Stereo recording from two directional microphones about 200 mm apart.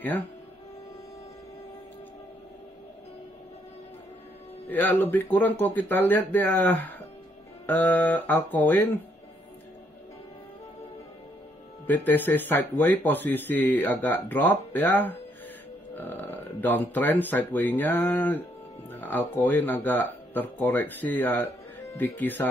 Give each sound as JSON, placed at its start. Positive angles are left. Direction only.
{"t": 4.6, "sound": "speech", "side_deg": 10}
{"t": 11.8, "sound": "speech", "side_deg": 10}